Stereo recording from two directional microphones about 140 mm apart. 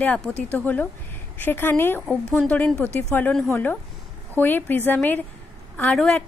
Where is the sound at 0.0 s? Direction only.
10° left (ahead or behind).